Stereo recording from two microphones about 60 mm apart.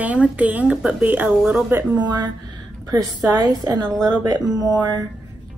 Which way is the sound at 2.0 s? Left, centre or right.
Right.